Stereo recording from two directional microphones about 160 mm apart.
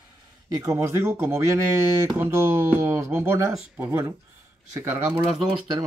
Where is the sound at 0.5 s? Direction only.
20° right (ahead or behind).